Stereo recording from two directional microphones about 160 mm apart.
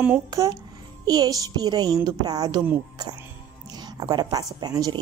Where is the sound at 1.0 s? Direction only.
25° right (ahead or behind).